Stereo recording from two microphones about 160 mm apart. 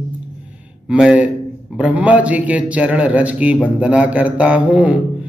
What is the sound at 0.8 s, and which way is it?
A man's voice, 5° right (ahead or behind).